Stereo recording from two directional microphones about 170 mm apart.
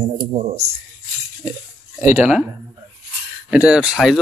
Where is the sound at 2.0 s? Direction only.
10° right (ahead or behind).